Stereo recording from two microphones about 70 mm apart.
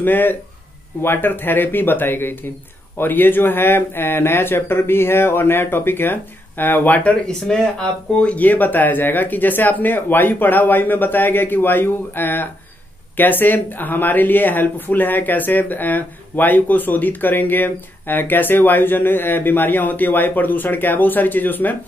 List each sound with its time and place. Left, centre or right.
0.0 s speech: left
7.3 s speech: centre
8.2 s speech: centre